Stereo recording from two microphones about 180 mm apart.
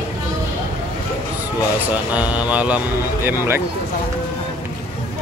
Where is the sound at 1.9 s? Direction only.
10° right (ahead or behind).